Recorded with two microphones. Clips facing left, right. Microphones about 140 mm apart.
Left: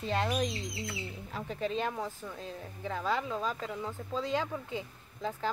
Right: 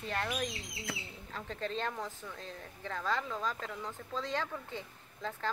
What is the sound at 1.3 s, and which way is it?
Speech, 10° left (ahead or behind).